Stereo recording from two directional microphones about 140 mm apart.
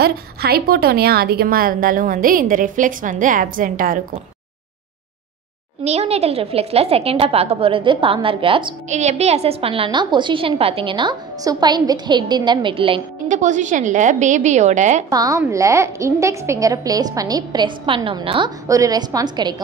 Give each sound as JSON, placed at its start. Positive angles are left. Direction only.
{"t": 0.0, "sound": "a woman's voice", "side_deg": -90}
{"t": 5.9, "sound": "a woman's voice", "side_deg": -50}
{"t": 8.8, "sound": "a woman's voice", "side_deg": -55}
{"t": 13.3, "sound": "a woman's voice", "side_deg": -60}
{"t": 15.0, "sound": "a woman's voice", "side_deg": -25}
{"t": 18.7, "sound": "a woman's voice", "side_deg": -25}